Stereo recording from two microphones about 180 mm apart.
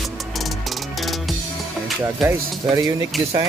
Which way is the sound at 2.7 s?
15° right (ahead or behind).